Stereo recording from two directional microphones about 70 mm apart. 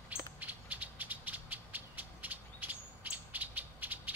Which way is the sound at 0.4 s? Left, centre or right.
Right.